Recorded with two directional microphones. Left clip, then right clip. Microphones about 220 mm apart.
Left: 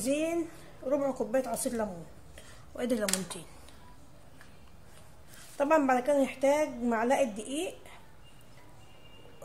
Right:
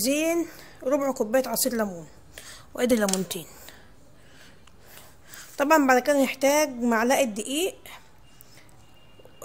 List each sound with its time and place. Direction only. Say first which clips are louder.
0.0 s speech: right 6 dB; 40° right (ahead or behind)
2.3 s a sound: right 8 dB; 45° right (ahead or behind)
3.3 s speech: right 8 dB; 35° right (ahead or behind)
5.6 s a woman's voice: right 6 dB; 45° right (ahead or behind)